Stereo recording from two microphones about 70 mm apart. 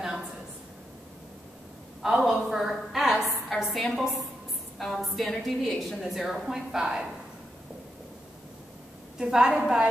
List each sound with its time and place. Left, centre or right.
2.0 s a woman's voice: centre
9.2 s a woman's voice: centre